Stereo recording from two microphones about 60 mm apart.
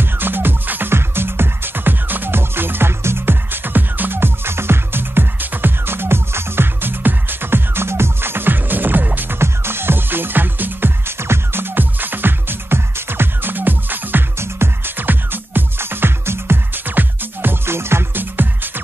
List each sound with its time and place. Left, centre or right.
0.0 s music: right